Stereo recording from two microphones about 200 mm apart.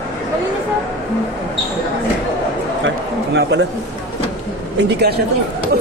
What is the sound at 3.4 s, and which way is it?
Speech, 60° right (ahead or behind).